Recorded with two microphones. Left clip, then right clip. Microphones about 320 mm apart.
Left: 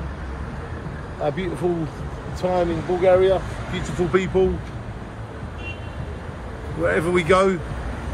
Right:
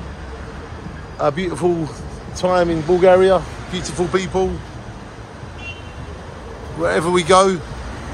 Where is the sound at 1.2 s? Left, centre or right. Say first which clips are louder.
Right 6 dB; right.